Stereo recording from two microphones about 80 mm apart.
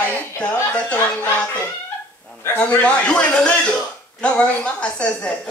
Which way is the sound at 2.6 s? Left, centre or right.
Centre.